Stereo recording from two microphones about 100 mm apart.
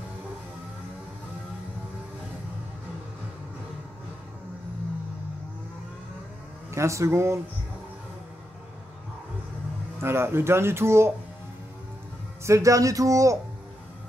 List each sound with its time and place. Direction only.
6.7 s speech: 30° right (ahead or behind)
9.9 s speech: 25° right (ahead or behind)
12.4 s speech: 30° right (ahead or behind)